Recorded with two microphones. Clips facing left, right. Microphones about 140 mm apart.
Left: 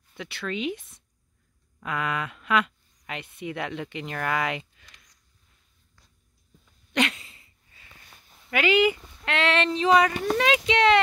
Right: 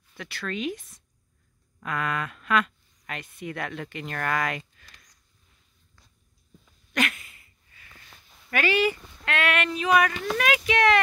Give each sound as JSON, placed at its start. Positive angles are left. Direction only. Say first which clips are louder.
{"t": 0.1, "sound": "speech", "louder": "left 1 dB", "side_deg": 20}
{"t": 6.9, "sound": "a sound", "louder": "left 2 dB", "side_deg": 25}
{"t": 8.5, "sound": "speech", "louder": "left 3 dB", "side_deg": 20}